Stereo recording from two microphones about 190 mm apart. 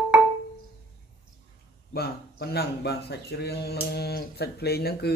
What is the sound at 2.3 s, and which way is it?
Speech, 55° left (ahead or behind).